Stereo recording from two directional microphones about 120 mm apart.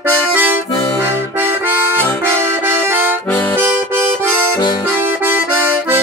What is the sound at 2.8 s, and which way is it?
Accordion, 15° right (ahead or behind).